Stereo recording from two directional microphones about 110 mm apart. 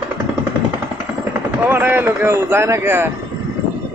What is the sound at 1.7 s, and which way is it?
A man's voice, 20° right (ahead or behind).